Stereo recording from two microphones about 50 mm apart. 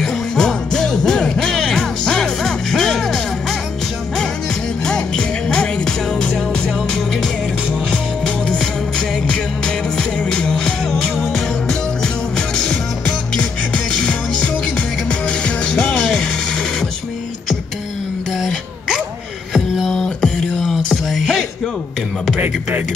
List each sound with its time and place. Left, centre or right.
0.0 s music: centre
4.8 s music: centre
9.7 s music: centre
14.8 s music: left
19.5 s a sound: centre
19.9 s music: centre
20.5 s music: centre